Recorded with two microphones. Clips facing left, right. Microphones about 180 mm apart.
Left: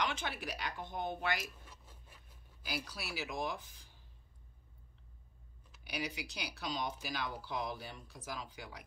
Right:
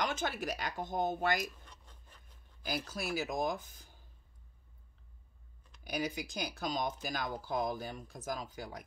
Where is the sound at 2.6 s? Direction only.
45° right (ahead or behind).